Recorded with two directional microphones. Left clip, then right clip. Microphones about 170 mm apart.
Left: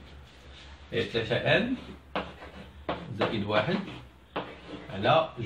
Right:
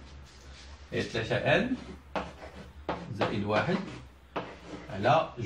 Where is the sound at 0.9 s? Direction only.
15° left (ahead or behind).